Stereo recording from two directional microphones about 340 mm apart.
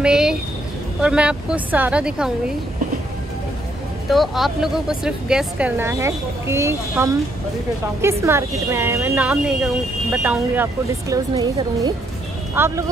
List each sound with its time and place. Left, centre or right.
0.0 s a sound: centre
1.0 s speech: centre
4.1 s speech: centre